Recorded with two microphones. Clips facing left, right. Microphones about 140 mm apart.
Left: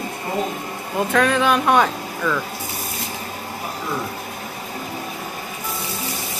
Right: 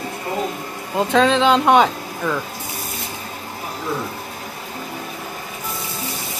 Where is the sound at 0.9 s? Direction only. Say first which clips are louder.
Right 3 dB; 20° right (ahead or behind).